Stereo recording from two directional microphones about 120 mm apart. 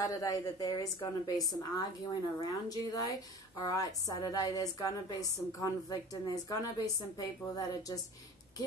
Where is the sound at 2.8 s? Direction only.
30° left (ahead or behind).